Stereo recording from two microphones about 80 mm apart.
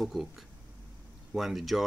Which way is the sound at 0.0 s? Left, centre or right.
Centre.